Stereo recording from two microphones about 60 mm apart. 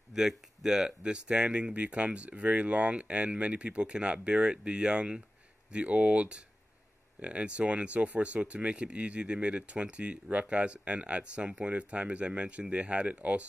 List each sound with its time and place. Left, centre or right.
0.1 s speech: centre